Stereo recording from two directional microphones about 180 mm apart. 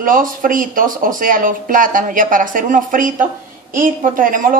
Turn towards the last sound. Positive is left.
turn(degrees=-50)  # may be behind; listen again after turning